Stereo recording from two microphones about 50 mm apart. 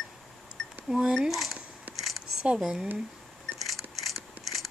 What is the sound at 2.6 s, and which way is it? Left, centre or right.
Speech, centre.